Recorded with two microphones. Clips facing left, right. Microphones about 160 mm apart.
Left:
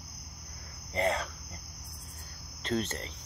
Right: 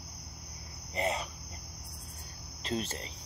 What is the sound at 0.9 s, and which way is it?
Speech, 10° right (ahead or behind).